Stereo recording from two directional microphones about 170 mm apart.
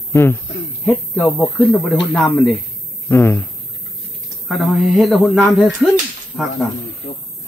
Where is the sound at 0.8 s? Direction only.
5° left (ahead or behind).